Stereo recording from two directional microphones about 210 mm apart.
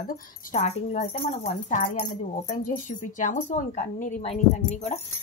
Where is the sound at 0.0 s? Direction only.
40° left (ahead or behind).